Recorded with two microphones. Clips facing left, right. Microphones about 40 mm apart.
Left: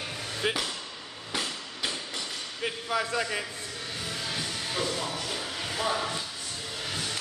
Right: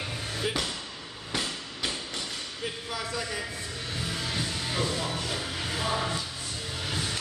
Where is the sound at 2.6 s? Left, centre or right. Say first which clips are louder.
Left 6 dB; left.